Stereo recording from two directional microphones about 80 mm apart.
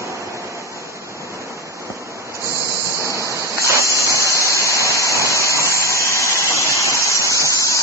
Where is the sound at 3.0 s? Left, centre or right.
Right.